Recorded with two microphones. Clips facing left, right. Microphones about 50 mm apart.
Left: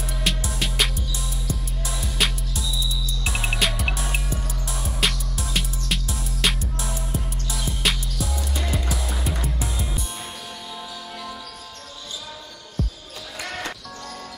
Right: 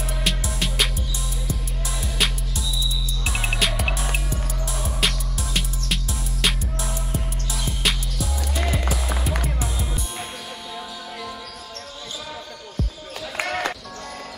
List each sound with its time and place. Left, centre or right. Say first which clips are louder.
0.2 s music: left 1 dB; centre
13.4 s music: right 6 dB; right